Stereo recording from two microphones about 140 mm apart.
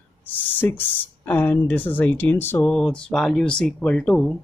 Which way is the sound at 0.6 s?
15° left (ahead or behind).